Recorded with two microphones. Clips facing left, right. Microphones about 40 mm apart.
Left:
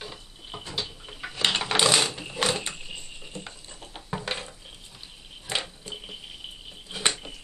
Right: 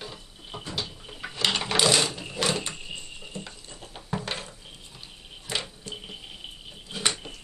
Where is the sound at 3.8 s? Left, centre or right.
Centre.